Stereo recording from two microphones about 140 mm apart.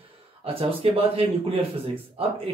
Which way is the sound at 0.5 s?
40° right (ahead or behind).